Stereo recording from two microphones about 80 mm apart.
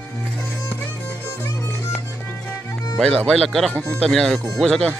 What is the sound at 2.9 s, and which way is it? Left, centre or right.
Speech, centre.